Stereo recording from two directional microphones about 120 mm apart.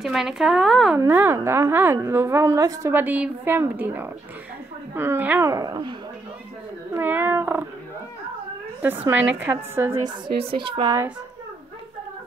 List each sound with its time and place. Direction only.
0.0 s speech: 5° right (ahead or behind)
0.9 s speech: 20° right (ahead or behind)
2.9 s a woman's voice: 15° right (ahead or behind)
5.5 s speech: 30° right (ahead or behind)
7.0 s a woman's voice: 15° right (ahead or behind)
8.8 s a woman's voice: 15° right (ahead or behind)
10.4 s speech: 50° right (ahead or behind)